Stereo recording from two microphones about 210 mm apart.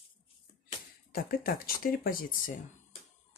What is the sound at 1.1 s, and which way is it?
Speech, 45° left (ahead or behind).